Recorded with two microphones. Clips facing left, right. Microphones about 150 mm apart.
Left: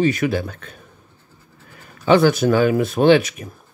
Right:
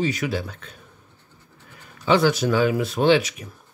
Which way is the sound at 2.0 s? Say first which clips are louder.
Left 5 dB; 50° left (ahead or behind).